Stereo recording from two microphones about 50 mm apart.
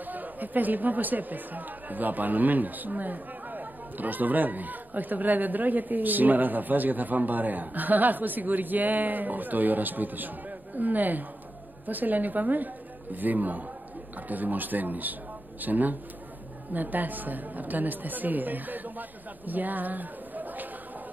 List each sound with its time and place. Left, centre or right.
0.0 s speech: right